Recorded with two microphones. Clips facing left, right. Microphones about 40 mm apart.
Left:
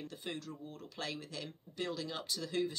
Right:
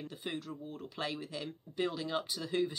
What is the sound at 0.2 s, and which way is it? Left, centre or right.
Speech, centre.